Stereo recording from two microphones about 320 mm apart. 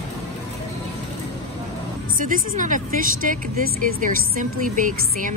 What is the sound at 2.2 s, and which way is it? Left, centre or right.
Speech, right.